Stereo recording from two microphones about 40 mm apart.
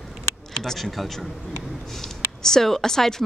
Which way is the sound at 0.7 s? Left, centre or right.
Centre.